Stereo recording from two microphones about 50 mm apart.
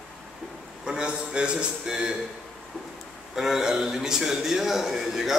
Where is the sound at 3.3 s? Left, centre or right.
Centre.